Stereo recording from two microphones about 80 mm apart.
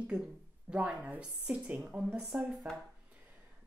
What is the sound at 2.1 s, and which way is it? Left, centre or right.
Speech, centre.